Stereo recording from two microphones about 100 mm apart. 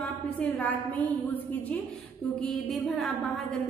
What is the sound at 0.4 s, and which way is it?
A woman's voice, 15° left (ahead or behind).